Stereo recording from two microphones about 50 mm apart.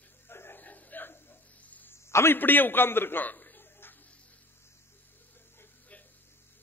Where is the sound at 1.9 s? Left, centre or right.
Left.